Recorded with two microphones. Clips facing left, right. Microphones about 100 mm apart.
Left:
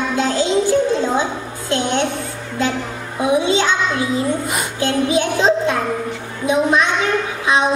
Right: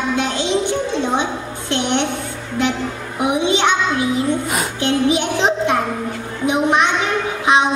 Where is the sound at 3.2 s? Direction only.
25° right (ahead or behind).